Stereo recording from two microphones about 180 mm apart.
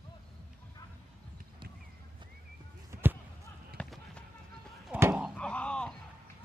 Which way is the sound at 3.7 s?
5° left (ahead or behind).